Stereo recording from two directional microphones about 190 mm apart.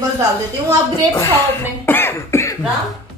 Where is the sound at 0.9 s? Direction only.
15° left (ahead or behind).